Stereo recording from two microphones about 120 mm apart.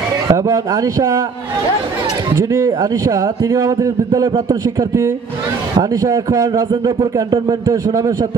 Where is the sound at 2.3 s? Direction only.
30° right (ahead or behind).